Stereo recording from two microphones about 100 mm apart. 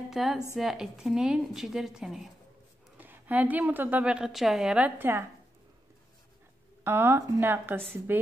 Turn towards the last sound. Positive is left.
turn(degrees=-20)  # may be behind; listen again after turning